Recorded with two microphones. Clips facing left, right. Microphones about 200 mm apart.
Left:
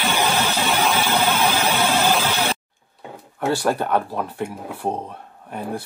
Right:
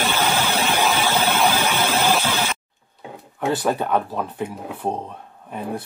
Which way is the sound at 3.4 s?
Centre (ahead or behind).